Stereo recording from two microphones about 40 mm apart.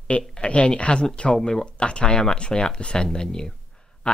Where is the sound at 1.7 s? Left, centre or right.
Left.